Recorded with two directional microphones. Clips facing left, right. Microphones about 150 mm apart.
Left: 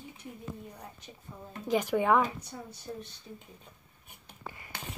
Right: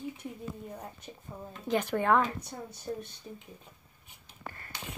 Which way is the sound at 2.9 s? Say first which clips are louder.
Right 4 dB; 50° right (ahead or behind).